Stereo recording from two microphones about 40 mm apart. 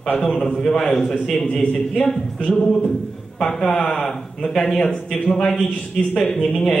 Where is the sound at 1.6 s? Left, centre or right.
Left.